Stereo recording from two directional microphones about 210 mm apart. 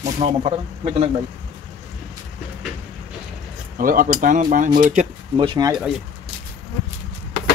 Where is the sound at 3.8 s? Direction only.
40° right (ahead or behind).